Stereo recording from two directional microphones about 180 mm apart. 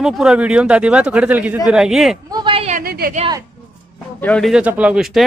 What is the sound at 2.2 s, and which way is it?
Speech, 25° right (ahead or behind).